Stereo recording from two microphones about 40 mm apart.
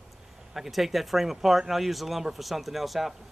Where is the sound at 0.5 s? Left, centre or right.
Centre.